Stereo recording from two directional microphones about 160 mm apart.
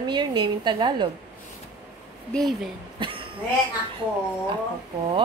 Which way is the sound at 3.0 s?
35° right (ahead or behind).